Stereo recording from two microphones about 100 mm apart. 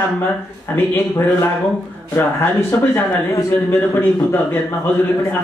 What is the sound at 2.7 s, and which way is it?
A man's voice, 15° left (ahead or behind).